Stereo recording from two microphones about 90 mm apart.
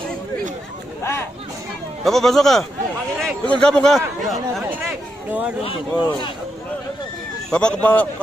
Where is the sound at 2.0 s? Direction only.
5° left (ahead or behind).